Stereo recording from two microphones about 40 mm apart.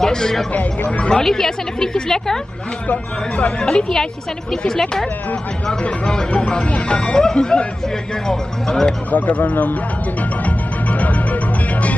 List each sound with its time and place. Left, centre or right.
0.0 s speech: centre
0.5 s speech: left
1.2 s speech: centre
2.9 s speech: left
3.6 s speech: centre
6.3 s speech: left
7.2 s speech: centre
9.1 s speech: left
10.4 s music: left